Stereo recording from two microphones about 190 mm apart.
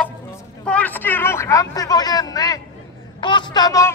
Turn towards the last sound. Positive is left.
turn(degrees=20)  # may be behind; listen again after turning